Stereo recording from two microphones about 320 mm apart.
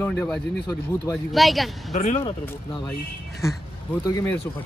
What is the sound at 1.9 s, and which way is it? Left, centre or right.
Speech, left.